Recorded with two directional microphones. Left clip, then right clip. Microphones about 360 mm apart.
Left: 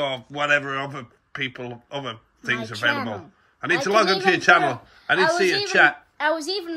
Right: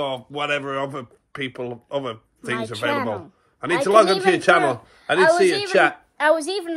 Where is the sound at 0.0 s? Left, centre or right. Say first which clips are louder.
Even; centre.